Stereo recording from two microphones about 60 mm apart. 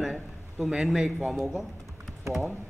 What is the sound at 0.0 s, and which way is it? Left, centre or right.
A man's voice, centre.